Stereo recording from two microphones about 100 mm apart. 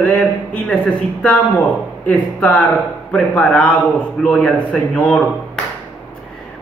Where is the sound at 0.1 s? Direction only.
15° left (ahead or behind).